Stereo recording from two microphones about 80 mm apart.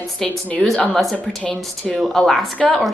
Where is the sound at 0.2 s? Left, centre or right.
Centre.